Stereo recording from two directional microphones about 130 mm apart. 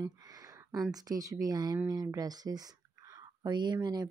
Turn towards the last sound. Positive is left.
turn(degrees=-35)  # may be behind; listen again after turning